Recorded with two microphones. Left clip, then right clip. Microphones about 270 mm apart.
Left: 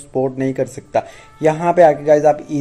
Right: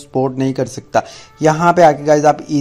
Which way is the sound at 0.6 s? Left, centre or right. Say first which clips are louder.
Right 2 dB; right.